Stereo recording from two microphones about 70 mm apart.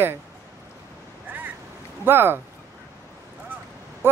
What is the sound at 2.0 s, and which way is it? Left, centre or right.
Speech, right.